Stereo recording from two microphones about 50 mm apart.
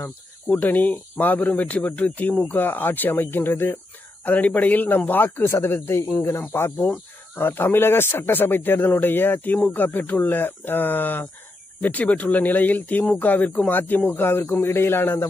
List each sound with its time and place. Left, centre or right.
0.0 s speech: left
4.2 s speech: left
6.5 s speech: left
6.9 s speech: left
14.6 s speech: left